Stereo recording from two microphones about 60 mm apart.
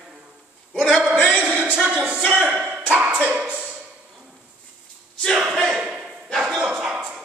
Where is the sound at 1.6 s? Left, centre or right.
Centre.